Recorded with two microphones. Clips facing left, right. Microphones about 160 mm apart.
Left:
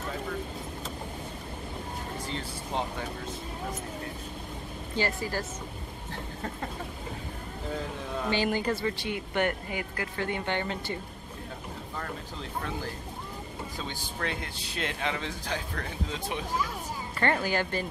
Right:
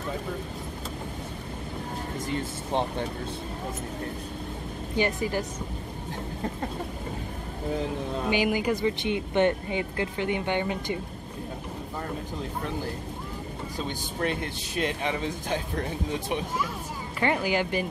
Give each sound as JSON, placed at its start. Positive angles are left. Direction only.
{"t": 4.9, "sound": "speech", "side_deg": -20}
{"t": 8.3, "sound": "speech", "side_deg": -10}
{"t": 14.8, "sound": "speech", "side_deg": -15}